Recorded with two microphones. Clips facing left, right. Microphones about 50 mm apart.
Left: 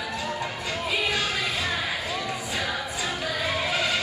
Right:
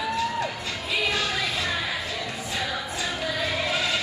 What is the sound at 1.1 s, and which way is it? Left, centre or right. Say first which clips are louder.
Music: even; centre.